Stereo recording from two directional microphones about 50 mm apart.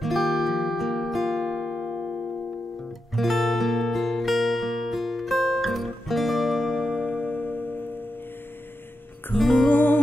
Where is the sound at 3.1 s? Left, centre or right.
Centre.